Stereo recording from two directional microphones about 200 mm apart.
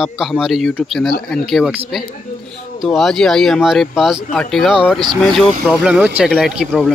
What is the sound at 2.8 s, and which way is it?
Speech, centre (ahead or behind).